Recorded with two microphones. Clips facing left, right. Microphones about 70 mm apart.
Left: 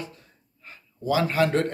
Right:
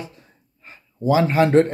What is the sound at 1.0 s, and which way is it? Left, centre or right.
Speech, right.